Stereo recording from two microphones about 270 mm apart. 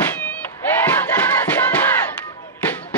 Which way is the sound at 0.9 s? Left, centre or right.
Centre.